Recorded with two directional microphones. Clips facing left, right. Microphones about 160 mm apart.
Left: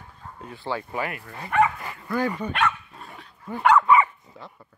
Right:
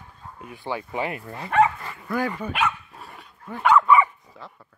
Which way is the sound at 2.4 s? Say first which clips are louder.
Left 1 dB; 5° right (ahead or behind).